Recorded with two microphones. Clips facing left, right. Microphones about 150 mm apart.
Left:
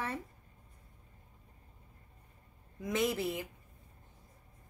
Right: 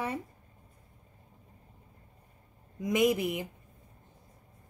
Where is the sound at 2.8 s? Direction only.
15° right (ahead or behind).